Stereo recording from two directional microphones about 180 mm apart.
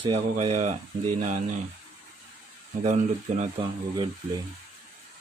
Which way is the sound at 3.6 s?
25° right (ahead or behind).